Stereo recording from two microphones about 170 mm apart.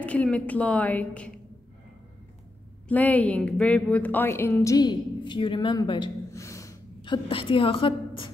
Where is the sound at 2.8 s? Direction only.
10° left (ahead or behind); by 8.3 s 30° left (ahead or behind).